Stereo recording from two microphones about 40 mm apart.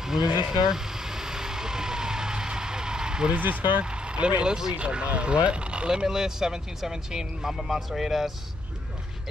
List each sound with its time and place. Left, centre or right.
0.5 s vehicle: centre
3.3 s speech: right
3.8 s speech: right
6.0 s speech: centre